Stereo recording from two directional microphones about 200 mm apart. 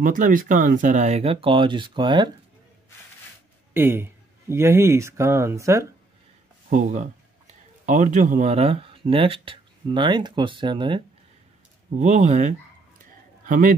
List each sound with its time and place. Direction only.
0.0 s speech: 40° right (ahead or behind); by 2.3 s 25° right (ahead or behind)
3.7 s speech: 10° right (ahead or behind)
6.7 s speech: 40° right (ahead or behind); by 11.0 s 25° right (ahead or behind)
12.0 s a man's voice: 35° right (ahead or behind)